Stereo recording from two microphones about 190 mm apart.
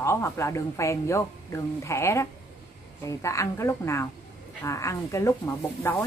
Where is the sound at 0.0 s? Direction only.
15° left (ahead or behind).